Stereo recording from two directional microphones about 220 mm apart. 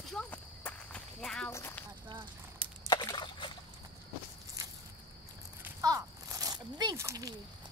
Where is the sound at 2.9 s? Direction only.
20° left (ahead or behind).